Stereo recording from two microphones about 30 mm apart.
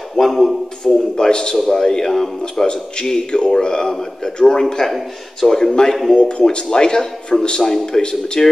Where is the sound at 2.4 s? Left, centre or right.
Left.